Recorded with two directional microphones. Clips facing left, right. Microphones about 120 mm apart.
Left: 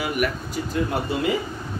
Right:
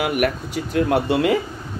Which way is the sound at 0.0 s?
60° right (ahead or behind).